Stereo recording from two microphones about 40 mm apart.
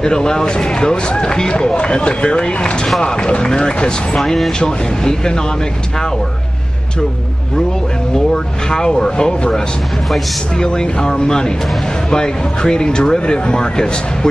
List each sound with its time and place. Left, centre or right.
0.0 s speech: centre
4.2 s speech: centre
8.6 s speech: centre
10.6 s speech: centre